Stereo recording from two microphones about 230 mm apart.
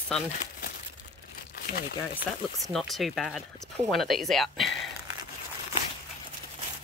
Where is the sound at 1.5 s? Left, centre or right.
Left.